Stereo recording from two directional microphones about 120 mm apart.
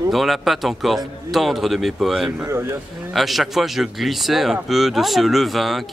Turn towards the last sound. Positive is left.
turn(degrees=0)  # may be behind; listen again after turning